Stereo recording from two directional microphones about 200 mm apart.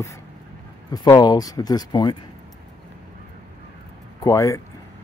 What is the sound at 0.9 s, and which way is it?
Speech, 20° left (ahead or behind).